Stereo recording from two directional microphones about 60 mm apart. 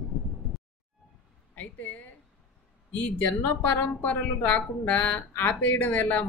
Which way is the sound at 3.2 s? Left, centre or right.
Left.